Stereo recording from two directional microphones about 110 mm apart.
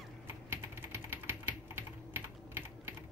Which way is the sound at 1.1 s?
20° right (ahead or behind).